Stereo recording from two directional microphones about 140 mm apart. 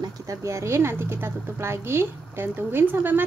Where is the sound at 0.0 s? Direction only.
20° right (ahead or behind).